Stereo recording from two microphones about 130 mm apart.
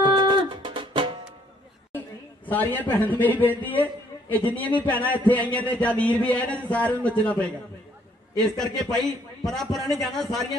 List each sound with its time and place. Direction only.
0.0 s music: 35° right (ahead or behind)
2.0 s a sound: 15° left (ahead or behind)
2.8 s a man's voice: 15° left (ahead or behind)
8.4 s a man's voice: 5° left (ahead or behind)